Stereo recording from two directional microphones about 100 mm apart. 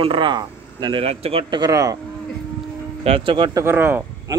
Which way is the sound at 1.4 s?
45° right (ahead or behind).